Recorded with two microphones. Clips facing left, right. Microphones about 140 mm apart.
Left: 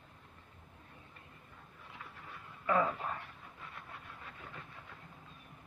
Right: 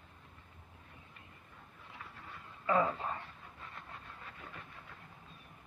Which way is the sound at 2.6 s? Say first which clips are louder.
Right 1 dB; 15° right (ahead or behind).